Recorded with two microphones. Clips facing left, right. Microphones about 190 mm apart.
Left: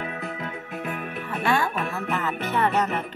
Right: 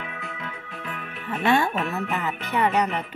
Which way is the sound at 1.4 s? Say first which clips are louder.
Right 3 dB; 20° right (ahead or behind).